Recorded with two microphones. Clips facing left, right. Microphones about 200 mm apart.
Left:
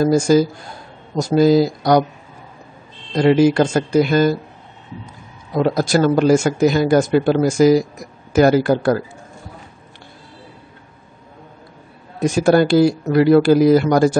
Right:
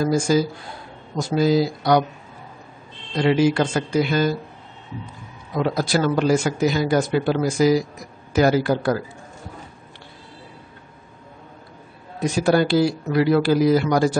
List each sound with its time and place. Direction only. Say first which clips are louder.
0.0 s a man's voice: left 5 dB; 45° left (ahead or behind)
3.2 s a man's voice: left 5 dB; 45° left (ahead or behind)
12.2 s a man's voice: left 5 dB; 45° left (ahead or behind)